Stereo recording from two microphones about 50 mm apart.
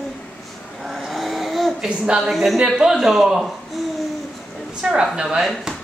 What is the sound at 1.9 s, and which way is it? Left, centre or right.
Speech, centre.